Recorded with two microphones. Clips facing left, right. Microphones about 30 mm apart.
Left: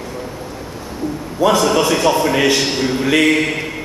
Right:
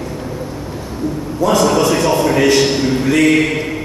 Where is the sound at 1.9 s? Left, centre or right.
Centre.